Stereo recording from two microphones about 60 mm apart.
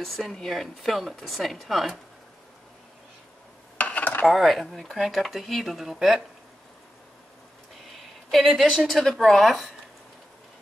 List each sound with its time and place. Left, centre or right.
0.0 s a woman's voice: centre
3.7 s dishes: left
4.3 s a woman's voice: centre
8.3 s a woman's voice: centre